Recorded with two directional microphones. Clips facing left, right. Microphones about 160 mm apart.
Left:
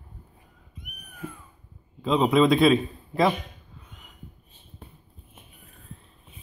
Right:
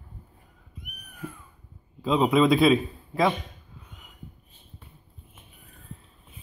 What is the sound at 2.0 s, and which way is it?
Speech, centre (ahead or behind).